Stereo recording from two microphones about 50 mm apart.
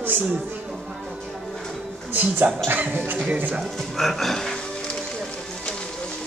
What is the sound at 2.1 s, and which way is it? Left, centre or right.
Speech, right.